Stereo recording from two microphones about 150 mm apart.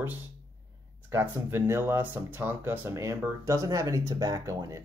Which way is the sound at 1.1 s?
15° right (ahead or behind).